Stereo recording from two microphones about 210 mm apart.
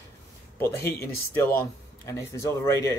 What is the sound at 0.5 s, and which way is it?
Speech, 10° left (ahead or behind).